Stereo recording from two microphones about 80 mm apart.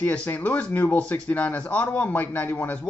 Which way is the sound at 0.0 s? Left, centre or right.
Centre.